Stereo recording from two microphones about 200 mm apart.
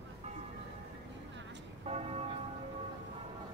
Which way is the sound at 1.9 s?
30° right (ahead or behind).